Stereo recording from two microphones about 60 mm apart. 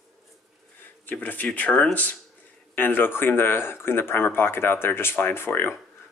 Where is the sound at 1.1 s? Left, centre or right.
Left.